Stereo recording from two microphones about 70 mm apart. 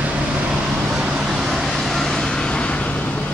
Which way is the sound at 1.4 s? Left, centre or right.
Centre.